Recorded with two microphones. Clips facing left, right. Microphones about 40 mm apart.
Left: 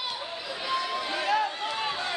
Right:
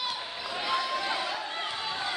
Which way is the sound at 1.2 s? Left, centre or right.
Left.